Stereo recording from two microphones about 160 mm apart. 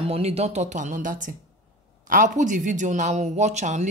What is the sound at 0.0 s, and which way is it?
A man's voice, 40° right (ahead or behind).